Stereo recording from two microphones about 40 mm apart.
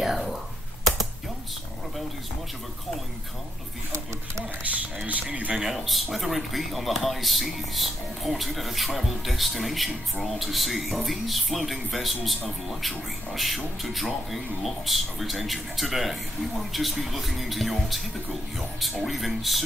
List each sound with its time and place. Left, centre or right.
0.0 s whispering: centre
4.6 s speech: right
5.6 s speech: centre